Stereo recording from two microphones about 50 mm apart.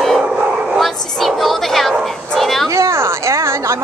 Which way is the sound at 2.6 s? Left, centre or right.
Right.